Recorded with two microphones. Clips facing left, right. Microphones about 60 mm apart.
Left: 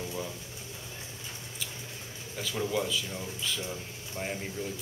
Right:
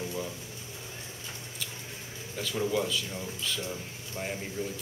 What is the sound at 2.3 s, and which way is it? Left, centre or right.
Speech, centre.